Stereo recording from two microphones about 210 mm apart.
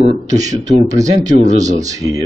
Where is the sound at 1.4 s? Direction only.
35° right (ahead or behind).